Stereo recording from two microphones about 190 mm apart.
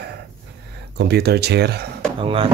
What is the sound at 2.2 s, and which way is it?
Speech, 30° right (ahead or behind).